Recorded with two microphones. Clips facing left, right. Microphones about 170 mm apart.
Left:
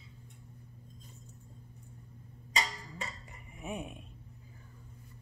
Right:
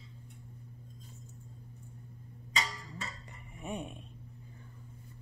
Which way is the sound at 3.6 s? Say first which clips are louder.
Even; centre (ahead or behind).